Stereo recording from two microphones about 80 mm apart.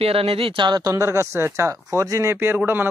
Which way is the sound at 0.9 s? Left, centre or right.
Right.